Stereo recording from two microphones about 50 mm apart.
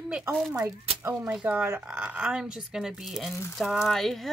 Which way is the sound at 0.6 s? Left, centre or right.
Right.